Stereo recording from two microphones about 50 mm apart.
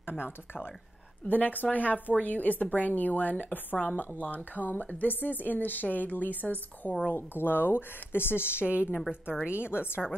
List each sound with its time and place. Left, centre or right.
1.2 s speech: left
7.1 s speech: left
8.6 s a woman's voice: right
9.6 s speech: left